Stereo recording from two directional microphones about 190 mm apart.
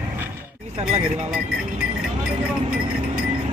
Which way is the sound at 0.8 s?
35° right (ahead or behind).